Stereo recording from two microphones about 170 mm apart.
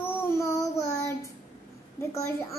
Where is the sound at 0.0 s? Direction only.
15° left (ahead or behind).